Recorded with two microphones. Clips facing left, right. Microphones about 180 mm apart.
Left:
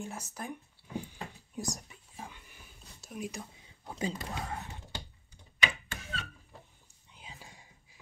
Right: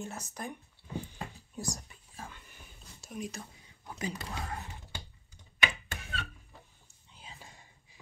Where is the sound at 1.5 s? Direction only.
20° left (ahead or behind); by 3.3 s 5° left (ahead or behind).